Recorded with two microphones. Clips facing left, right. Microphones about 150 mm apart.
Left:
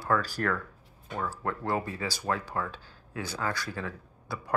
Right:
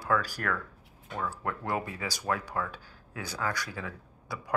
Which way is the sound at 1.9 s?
15° right (ahead or behind).